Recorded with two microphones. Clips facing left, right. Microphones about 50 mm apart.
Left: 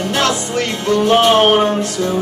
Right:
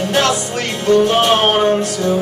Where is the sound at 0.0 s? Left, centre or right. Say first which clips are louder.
Right 1 dB; right.